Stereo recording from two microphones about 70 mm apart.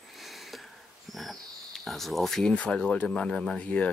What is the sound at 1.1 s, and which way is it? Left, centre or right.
Speech, centre.